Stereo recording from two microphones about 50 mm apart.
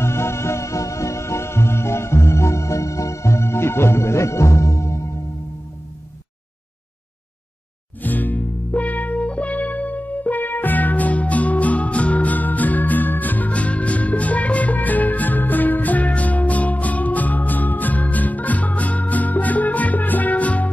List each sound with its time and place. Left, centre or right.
0.0 s music: left
8.0 s music: left